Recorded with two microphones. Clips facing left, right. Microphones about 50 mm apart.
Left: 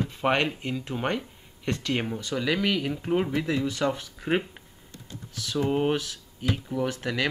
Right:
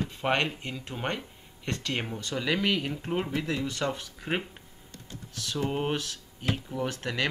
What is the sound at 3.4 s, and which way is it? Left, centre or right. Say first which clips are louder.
Speech: left 4 dB; centre.